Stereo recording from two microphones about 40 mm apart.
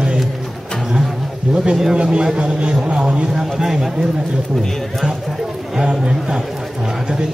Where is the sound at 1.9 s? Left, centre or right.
Right.